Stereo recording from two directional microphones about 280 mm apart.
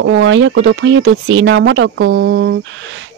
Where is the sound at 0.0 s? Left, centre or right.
Right.